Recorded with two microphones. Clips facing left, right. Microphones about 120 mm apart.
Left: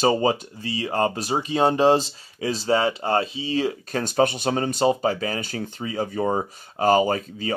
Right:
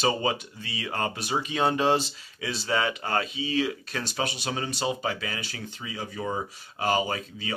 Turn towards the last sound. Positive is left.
turn(degrees=40)  # may be behind; listen again after turning